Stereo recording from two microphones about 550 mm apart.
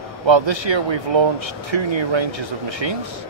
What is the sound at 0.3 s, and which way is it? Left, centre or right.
Speech, right.